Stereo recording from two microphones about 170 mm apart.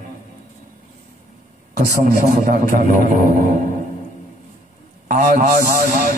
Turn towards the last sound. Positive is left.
turn(degrees=-45)  # may be behind; listen again after turning